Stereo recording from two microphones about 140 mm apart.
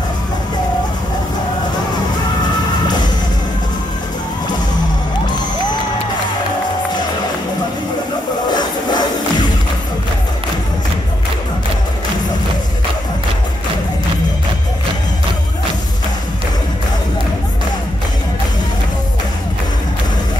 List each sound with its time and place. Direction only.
8.5 s music: 30° left (ahead or behind)